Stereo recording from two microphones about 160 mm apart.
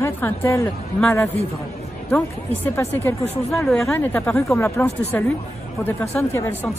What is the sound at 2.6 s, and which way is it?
Speech, 15° left (ahead or behind).